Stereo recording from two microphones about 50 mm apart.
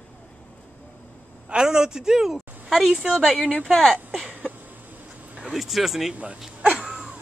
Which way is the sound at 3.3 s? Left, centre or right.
Left.